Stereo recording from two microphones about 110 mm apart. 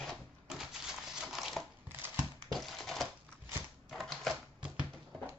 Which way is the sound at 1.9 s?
20° right (ahead or behind).